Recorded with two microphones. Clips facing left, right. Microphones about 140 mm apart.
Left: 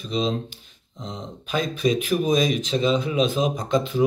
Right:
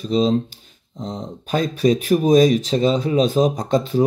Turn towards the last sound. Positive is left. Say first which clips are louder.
# right 4 dB
turn(degrees=-40)  # may be behind; listen again after turning